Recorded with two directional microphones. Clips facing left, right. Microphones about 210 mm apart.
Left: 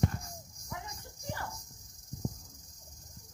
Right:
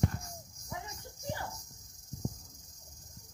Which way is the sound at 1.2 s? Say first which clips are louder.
Right 1 dB; 15° right (ahead or behind).